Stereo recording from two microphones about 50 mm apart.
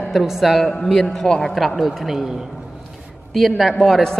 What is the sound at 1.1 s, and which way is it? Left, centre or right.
Speech, centre.